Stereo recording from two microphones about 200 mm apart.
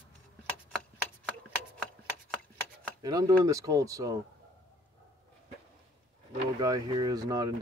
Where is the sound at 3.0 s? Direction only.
20° right (ahead or behind).